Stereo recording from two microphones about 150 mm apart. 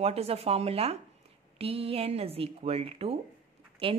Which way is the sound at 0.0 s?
40° right (ahead or behind).